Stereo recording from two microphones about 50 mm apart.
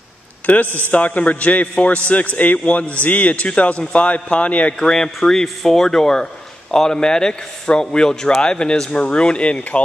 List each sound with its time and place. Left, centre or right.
0.7 s a man's voice: right
0.9 s a man's voice: left
4.7 s a man's voice: centre